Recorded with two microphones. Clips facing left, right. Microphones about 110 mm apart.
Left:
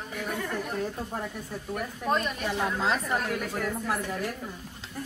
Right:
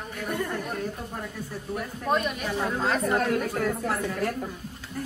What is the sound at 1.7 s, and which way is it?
A woman's voice, centre (ahead or behind).